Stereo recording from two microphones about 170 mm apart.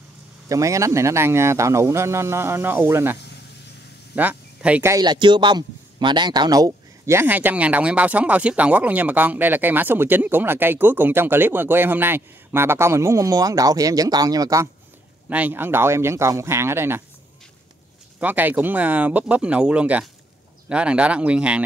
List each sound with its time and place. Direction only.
0.5 s speech: 20° right (ahead or behind)
4.9 s speech: 25° right (ahead or behind)
15.2 s speech: 10° right (ahead or behind)
18.2 s speech: 10° right (ahead or behind)